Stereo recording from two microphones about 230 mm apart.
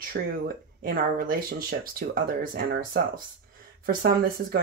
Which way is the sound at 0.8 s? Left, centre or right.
Right.